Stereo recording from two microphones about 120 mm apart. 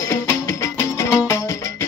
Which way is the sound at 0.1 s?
20° left (ahead or behind).